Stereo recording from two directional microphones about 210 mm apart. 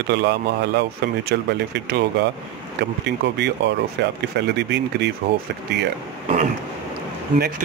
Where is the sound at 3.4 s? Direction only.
55° right (ahead or behind).